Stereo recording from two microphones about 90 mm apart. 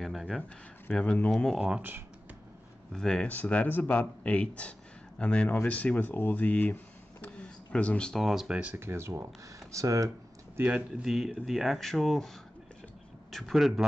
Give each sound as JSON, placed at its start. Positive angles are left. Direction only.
{"t": 0.0, "sound": "speech", "side_deg": 0}
{"t": 0.4, "sound": "speech", "side_deg": 15}
{"t": 1.3, "sound": "speech", "side_deg": 0}
{"t": 1.6, "sound": "speech", "side_deg": -15}
{"t": 2.9, "sound": "speech", "side_deg": 5}
{"t": 8.2, "sound": "speech", "side_deg": -5}
{"t": 8.7, "sound": "speech", "side_deg": -30}
{"t": 9.7, "sound": "computer keyboard", "side_deg": -35}
{"t": 10.6, "sound": "speech", "side_deg": -15}
{"t": 11.1, "sound": "speech", "side_deg": -5}
{"t": 13.3, "sound": "speech", "side_deg": 0}